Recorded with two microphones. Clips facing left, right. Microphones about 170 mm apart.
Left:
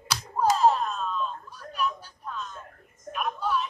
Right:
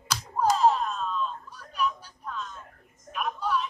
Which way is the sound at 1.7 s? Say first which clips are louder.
Right 1 dB; 5° left (ahead or behind).